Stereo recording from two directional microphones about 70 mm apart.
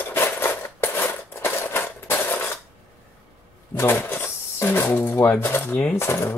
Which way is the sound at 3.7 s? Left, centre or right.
Left.